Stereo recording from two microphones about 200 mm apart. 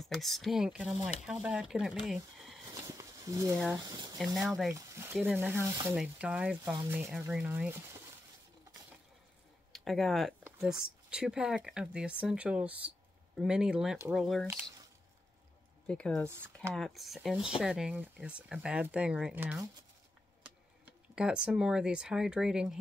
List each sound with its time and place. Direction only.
0.0 s speech: centre (ahead or behind)
2.3 s a sound: centre (ahead or behind)
2.6 s a sound: 15° right (ahead or behind)
3.5 s speech: centre (ahead or behind)
3.8 s speech: 20° right (ahead or behind)
4.4 s speech: centre (ahead or behind)
4.7 s a sound: 15° right (ahead or behind)
5.1 s speech: 10° right (ahead or behind)
9.7 s speech: centre (ahead or behind)
15.9 s speech: 5° left (ahead or behind)
20.8 s speech: 5° right (ahead or behind)